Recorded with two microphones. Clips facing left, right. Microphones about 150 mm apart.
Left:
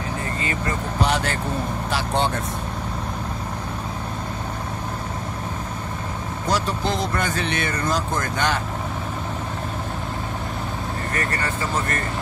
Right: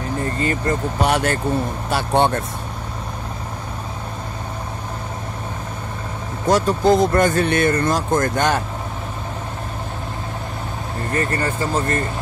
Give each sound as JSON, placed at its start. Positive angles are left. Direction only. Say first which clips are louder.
{"t": 0.4, "sound": "speech", "louder": "right 7 dB", "side_deg": -45}
{"t": 6.5, "sound": "speech", "louder": "right 9 dB", "side_deg": -45}